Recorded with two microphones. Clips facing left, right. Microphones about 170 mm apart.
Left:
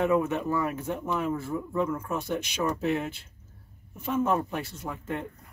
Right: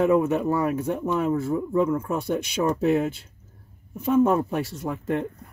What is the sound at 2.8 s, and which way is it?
Speech, 45° right (ahead or behind).